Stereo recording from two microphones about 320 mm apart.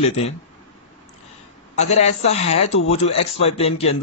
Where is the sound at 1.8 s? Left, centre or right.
Left.